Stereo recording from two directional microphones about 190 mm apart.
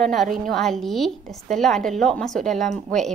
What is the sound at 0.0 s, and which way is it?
A woman's voice, centre (ahead or behind).